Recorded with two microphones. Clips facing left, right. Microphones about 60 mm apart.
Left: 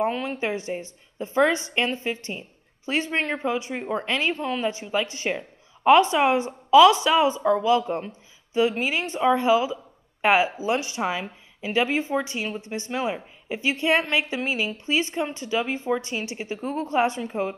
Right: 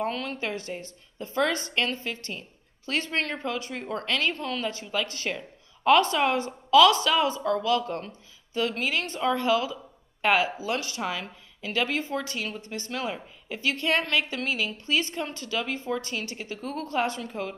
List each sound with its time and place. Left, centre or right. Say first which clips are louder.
0.0 s a woman's voice: left 5 dB; centre